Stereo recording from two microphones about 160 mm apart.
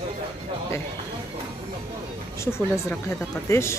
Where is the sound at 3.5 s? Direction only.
15° left (ahead or behind).